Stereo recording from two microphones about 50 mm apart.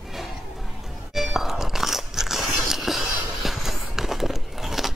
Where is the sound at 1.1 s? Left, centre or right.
Centre.